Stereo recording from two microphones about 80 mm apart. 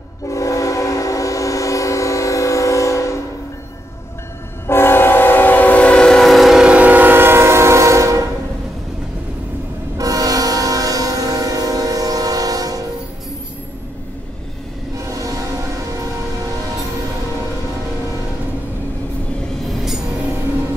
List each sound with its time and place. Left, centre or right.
0.3 s train: left
4.6 s train: left; by 8.3 s right
9.9 s train horn: right
15.1 s train: right